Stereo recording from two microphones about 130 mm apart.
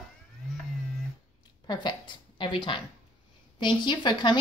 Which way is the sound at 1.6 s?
35° left (ahead or behind).